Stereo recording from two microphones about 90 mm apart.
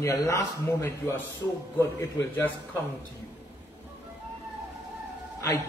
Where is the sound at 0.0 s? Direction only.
35° left (ahead or behind).